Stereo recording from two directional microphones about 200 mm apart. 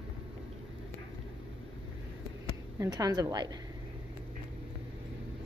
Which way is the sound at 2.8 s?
15° right (ahead or behind).